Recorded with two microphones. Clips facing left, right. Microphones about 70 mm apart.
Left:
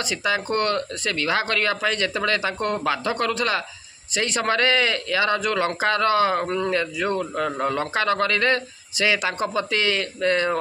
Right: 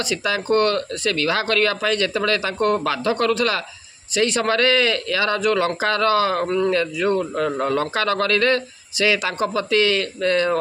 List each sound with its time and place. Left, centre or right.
0.1 s a man's voice: left